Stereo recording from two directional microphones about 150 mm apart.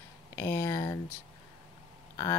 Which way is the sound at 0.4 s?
15° left (ahead or behind).